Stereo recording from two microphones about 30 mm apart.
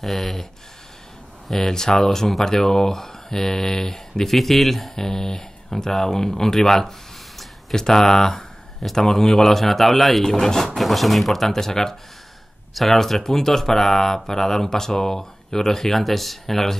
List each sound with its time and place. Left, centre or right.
0.0 s speech: centre
1.7 s speech: centre
7.9 s speech: centre
10.8 s speech: centre
11.5 s speech: centre